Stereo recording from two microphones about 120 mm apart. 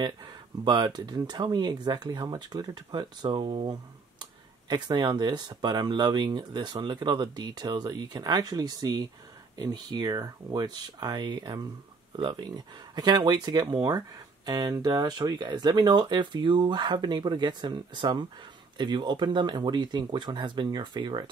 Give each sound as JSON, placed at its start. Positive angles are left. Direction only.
{"t": 0.0, "sound": "speech", "side_deg": -40}